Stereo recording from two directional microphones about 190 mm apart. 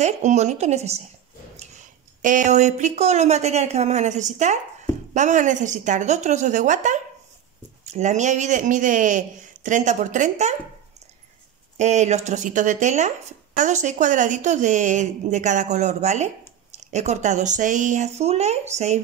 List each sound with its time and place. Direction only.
0.0 s a man's voice: 40° right (ahead or behind)
2.2 s a man's voice: 40° right (ahead or behind)
11.7 s a man's voice: 40° right (ahead or behind)